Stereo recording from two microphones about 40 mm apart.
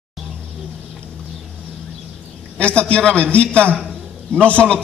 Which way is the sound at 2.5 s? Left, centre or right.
Left.